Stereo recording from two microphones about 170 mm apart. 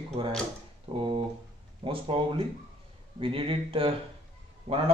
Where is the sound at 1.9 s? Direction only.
35° right (ahead or behind).